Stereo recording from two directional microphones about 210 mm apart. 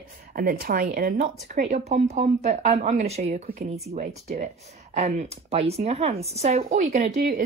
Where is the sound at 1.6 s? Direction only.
35° right (ahead or behind).